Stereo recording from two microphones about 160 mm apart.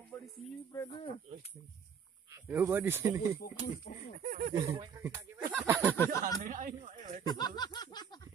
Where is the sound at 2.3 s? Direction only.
15° right (ahead or behind).